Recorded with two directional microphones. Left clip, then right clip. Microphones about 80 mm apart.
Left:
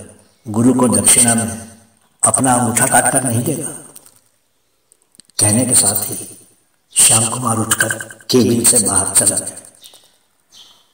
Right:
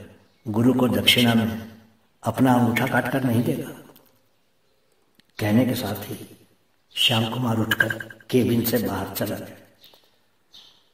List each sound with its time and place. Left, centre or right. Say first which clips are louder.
0.5 s a man's voice: left 7 dB; centre
5.1 s a man's voice: left 5 dB; left
8.3 s speech: left 8 dB; left
8.7 s a man's voice: left 7 dB; centre